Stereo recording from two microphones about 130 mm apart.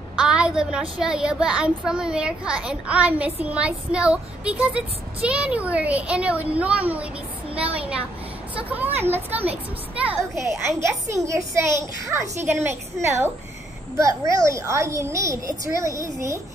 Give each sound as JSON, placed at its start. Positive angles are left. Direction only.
{"t": 0.1, "sound": "speech", "side_deg": -10}
{"t": 8.6, "sound": "speech", "side_deg": -15}
{"t": 10.4, "sound": "a child's voice", "side_deg": -25}
{"t": 14.3, "sound": "a child's voice", "side_deg": -25}